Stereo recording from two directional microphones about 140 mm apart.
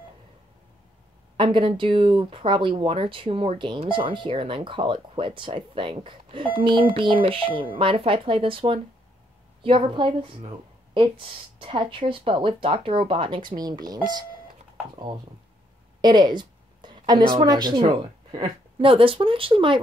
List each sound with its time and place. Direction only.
1.3 s speech: 35° right (ahead or behind)
16.0 s a woman's voice: 30° right (ahead or behind)